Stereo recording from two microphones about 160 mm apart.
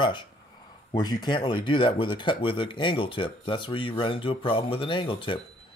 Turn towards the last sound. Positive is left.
turn(degrees=30)  # may be behind; listen again after turning